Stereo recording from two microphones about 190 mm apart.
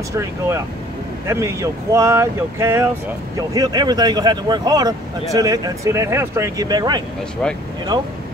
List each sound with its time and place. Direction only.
1.2 s speech: 15° right (ahead or behind)